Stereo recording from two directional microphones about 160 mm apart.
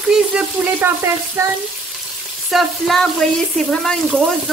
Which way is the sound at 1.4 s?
15° right (ahead or behind).